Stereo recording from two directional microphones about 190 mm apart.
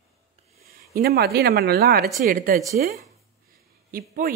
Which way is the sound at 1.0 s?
55° right (ahead or behind).